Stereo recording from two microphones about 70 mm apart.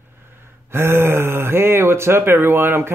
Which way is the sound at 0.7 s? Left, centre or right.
Right.